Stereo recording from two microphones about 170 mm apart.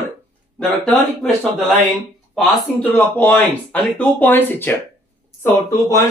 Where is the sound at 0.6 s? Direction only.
10° left (ahead or behind).